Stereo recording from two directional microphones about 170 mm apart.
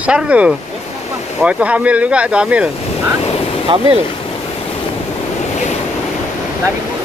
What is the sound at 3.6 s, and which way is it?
Speech, 30° right (ahead or behind).